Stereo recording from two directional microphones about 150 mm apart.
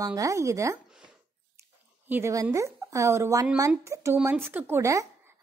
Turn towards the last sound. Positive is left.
turn(degrees=-20)  # may be behind; listen again after turning